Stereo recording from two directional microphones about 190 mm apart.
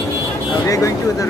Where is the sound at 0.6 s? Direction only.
15° left (ahead or behind).